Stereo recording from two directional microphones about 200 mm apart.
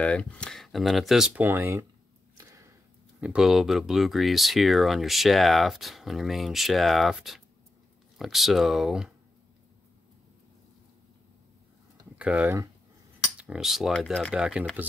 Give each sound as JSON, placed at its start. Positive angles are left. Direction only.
{"t": 0.0, "sound": "speech", "side_deg": 5}
{"t": 2.3, "sound": "a sound", "side_deg": -15}
{"t": 3.2, "sound": "speech", "side_deg": -5}
{"t": 12.2, "sound": "speech", "side_deg": -5}